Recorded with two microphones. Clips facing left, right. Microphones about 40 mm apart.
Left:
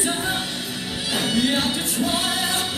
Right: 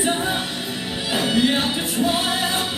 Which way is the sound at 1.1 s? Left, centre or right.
Centre.